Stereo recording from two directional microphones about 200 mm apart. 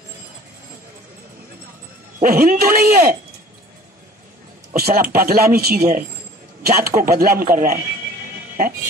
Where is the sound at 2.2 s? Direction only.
45° right (ahead or behind).